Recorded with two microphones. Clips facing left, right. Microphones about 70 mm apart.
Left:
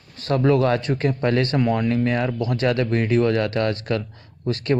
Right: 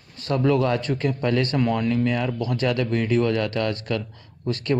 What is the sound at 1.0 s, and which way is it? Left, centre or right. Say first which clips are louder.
Speech: left 2 dB; left.